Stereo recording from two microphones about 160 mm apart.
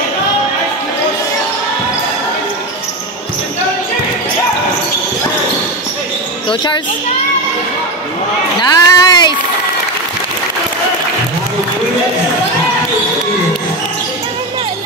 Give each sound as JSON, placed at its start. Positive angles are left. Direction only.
{"t": 6.5, "sound": "speech", "side_deg": 30}
{"t": 8.5, "sound": "speech", "side_deg": 25}